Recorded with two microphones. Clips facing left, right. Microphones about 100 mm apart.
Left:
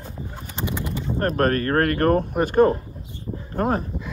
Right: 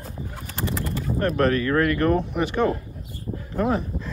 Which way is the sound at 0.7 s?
20° left (ahead or behind).